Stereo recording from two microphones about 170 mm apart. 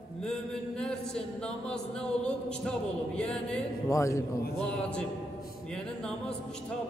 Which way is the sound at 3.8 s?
20° left (ahead or behind).